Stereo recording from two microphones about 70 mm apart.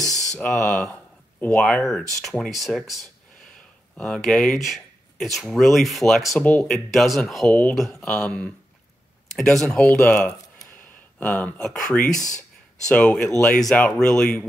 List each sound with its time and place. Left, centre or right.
0.0 s a sound: centre
0.4 s speech: centre
3.9 s speech: centre
6.4 s speech: left
6.7 s speech: centre
7.4 s speech: centre
7.7 s speech: centre
9.9 s speech: centre
10.8 s a sound: centre
11.6 s speech: centre